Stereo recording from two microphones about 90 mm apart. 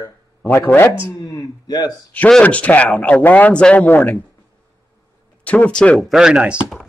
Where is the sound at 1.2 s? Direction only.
45° left (ahead or behind).